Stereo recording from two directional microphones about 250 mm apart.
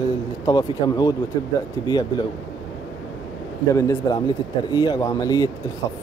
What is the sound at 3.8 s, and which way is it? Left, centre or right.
Speech, centre.